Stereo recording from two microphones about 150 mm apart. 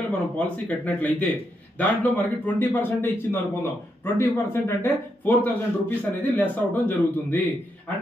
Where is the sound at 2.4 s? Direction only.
15° left (ahead or behind).